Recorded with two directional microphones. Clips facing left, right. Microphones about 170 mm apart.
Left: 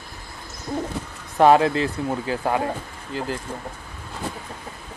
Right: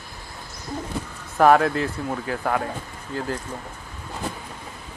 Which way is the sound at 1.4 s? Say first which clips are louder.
Left 1 dB; 25° left (ahead or behind).